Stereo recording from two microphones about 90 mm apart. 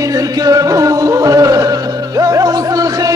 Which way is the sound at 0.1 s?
40° right (ahead or behind).